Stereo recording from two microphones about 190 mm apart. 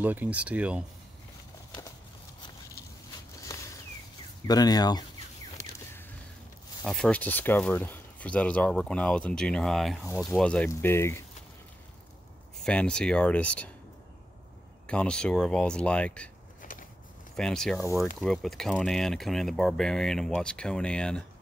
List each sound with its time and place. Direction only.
0.0 s speech: 10° right (ahead or behind)
3.3 s a sound: 15° left (ahead or behind)
4.5 s speech: 20° left (ahead or behind)
6.8 s speech: centre (ahead or behind)
12.5 s speech: 5° left (ahead or behind)
14.9 s speech: 5° left (ahead or behind)
16.6 s a sound: 45° left (ahead or behind)
17.4 s speech: 5° left (ahead or behind)